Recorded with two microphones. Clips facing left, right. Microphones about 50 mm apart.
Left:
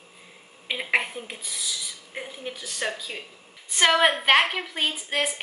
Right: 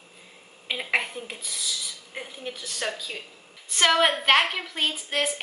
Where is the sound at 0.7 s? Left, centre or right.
Centre.